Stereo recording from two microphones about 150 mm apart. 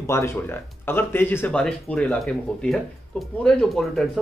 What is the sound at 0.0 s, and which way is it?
Speech, 15° left (ahead or behind).